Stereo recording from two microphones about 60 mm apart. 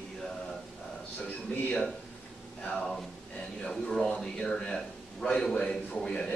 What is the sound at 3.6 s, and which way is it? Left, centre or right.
A man's voice, centre.